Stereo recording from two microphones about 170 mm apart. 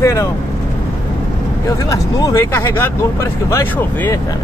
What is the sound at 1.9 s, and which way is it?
Speech, 20° left (ahead or behind).